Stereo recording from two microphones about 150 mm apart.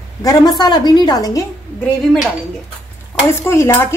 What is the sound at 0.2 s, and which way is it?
A woman's voice, 25° left (ahead or behind).